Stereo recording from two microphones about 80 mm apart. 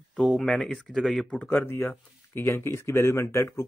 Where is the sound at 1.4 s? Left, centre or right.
Left.